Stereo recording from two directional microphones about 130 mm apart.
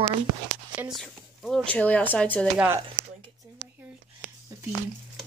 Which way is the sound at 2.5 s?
10° right (ahead or behind).